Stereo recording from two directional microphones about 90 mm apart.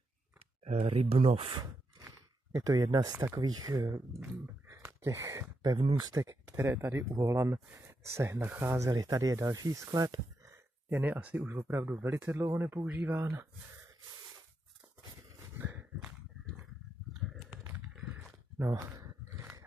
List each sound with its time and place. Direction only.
0.8 s speech: 90° right
1.5 s a sound: 55° right (ahead or behind)
2.5 s speech: 40° right (ahead or behind)
4.6 s a sound: 35° right (ahead or behind)
5.6 s speech: 55° right (ahead or behind)
6.5 s speech: 25° right (ahead or behind); by 10.1 s 40° right (ahead or behind)
10.4 s speech: 30° right (ahead or behind)
15.5 s a sound: 25° right (ahead or behind)
17.3 s typing: 5° right (ahead or behind)
18.6 s speech: 25° right (ahead or behind)